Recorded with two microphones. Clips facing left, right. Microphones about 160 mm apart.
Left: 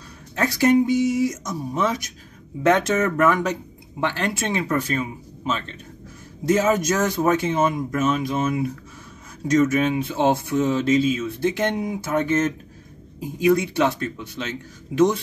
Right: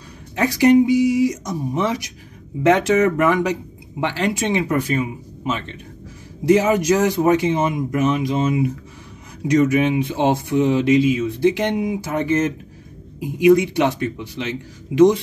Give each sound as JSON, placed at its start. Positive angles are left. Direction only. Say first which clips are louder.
{"t": 0.4, "sound": "speech", "louder": "right 4 dB", "side_deg": -15}
{"t": 13.2, "sound": "speech", "louder": "right 5 dB", "side_deg": -15}